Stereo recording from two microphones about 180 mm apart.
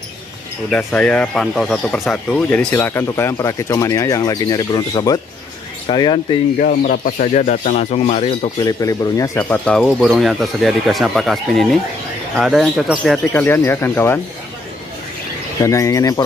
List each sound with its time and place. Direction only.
0.7 s speech: 5° left (ahead or behind); by 6.2 s 25° left (ahead or behind)
6.6 s speech: 55° left (ahead or behind); by 8.6 s 35° left (ahead or behind)
8.6 s speech: 20° left (ahead or behind); by 13.2 s 5° right (ahead or behind)
13.3 s speech: 10° left (ahead or behind)
15.6 s speech: 15° left (ahead or behind)